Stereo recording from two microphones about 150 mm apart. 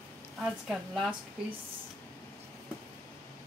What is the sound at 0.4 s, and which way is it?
Speech, centre (ahead or behind).